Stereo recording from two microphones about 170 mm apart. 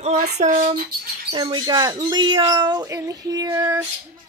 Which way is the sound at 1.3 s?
25° right (ahead or behind).